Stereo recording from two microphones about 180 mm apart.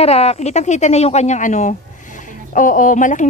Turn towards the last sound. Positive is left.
turn(degrees=45)  # may be behind; listen again after turning